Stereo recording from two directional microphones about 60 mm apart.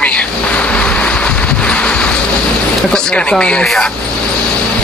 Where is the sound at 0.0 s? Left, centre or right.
Left.